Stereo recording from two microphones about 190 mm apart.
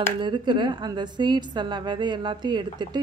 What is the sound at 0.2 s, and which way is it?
A woman's voice, 25° right (ahead or behind).